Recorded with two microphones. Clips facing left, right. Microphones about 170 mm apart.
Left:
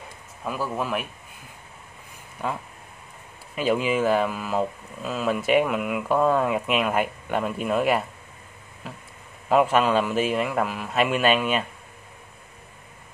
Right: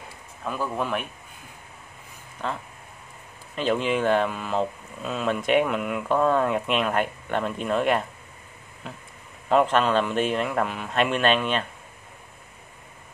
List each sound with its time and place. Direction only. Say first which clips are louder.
0.4 s speech: even; 5° left (ahead or behind)
2.4 s speech: left 1 dB; 10° left (ahead or behind)